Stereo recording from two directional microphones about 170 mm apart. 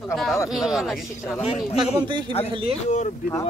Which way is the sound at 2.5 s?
30° right (ahead or behind).